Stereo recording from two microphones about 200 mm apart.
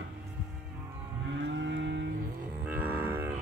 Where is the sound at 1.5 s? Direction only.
60° right (ahead or behind).